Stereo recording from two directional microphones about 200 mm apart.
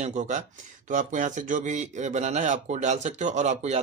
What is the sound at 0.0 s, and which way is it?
Speech, 35° right (ahead or behind).